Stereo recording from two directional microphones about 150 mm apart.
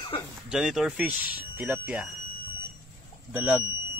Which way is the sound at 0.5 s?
5° right (ahead or behind).